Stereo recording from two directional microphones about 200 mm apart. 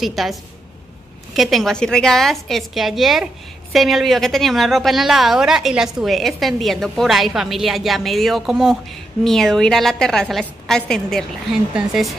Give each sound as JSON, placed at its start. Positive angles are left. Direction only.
{"t": 0.0, "sound": "a woman's voice", "side_deg": 0}